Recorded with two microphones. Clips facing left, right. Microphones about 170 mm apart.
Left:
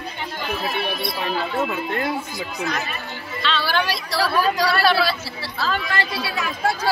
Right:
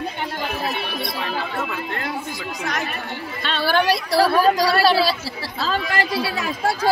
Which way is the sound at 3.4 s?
50° right (ahead or behind).